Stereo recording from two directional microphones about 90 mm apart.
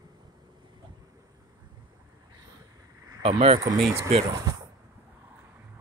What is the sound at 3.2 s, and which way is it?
Speech, 80° right.